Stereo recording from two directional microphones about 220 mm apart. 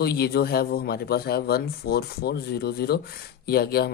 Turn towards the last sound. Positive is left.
turn(degrees=45)  # may be behind; listen again after turning